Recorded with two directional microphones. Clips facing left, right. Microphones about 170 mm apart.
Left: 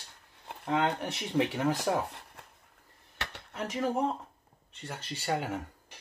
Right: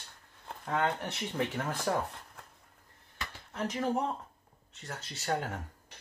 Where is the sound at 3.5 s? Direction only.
5° left (ahead or behind).